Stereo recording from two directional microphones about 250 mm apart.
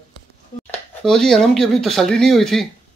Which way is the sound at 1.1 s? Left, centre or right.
Centre.